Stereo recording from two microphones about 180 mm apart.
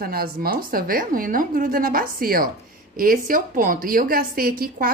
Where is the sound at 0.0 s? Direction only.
55° right (ahead or behind).